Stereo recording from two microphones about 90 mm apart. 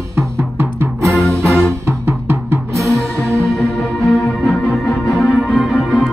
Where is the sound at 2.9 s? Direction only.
10° left (ahead or behind).